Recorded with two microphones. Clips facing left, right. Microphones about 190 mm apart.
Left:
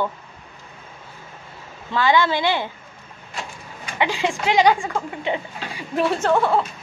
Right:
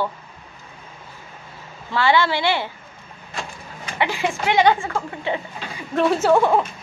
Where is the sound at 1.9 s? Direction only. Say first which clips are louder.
Even; 15° left (ahead or behind).